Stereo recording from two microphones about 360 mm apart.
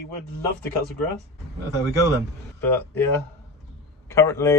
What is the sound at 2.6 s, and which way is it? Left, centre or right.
Speech, centre.